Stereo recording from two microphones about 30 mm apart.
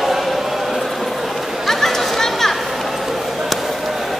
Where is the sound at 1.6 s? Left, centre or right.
Centre.